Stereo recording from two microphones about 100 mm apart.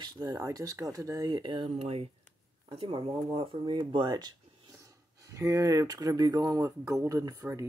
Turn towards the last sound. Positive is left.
turn(degrees=-35)  # may be behind; listen again after turning